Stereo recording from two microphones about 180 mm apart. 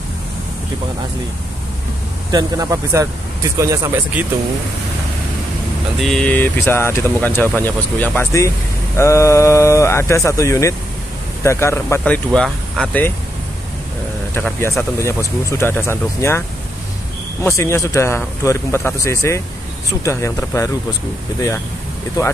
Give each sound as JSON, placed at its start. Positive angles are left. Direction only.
{"t": 2.3, "sound": "speech", "side_deg": -20}
{"t": 5.9, "sound": "speech", "side_deg": 0}
{"t": 14.3, "sound": "speech", "side_deg": 10}